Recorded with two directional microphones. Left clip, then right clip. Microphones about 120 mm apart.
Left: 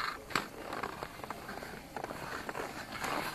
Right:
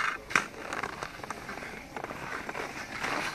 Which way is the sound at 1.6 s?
20° left (ahead or behind).